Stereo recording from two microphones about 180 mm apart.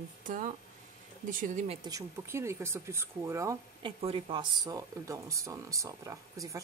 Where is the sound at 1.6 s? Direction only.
20° right (ahead or behind).